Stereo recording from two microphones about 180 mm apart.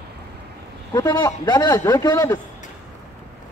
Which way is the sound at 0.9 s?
20° left (ahead or behind).